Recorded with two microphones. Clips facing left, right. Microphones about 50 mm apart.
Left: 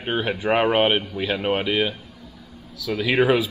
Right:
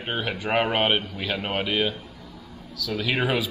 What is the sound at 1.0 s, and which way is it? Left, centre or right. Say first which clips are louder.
Speech: left 4 dB; centre.